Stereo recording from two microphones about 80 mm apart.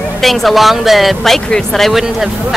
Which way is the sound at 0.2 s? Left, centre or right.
Centre.